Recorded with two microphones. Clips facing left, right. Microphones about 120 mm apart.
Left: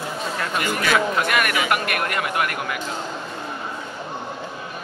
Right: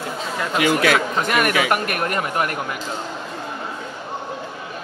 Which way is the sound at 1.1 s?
35° right (ahead or behind).